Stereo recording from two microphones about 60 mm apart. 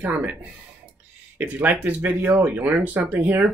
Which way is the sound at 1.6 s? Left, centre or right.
Right.